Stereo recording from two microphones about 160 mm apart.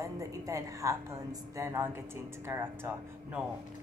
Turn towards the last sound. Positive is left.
turn(degrees=-15)  # may be behind; listen again after turning